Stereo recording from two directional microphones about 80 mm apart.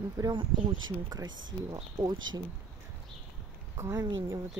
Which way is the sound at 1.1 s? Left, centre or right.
Right.